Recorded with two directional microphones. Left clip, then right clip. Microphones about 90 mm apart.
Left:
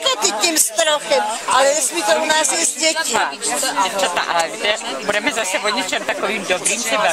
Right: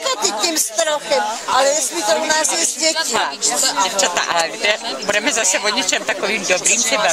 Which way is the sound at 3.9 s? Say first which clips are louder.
Right 1 dB; 50° right (ahead or behind).